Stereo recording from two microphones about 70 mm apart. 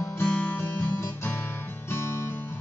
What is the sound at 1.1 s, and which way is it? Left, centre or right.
Music, left.